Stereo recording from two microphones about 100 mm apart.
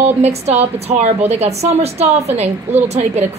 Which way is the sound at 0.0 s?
90° right.